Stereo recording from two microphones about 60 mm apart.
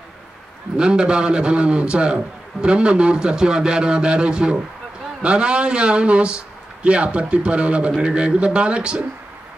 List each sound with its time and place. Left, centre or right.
0.7 s a man's voice: centre